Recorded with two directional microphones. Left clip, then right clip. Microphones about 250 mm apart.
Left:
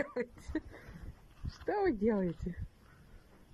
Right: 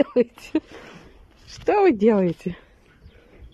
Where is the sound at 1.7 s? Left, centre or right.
Centre.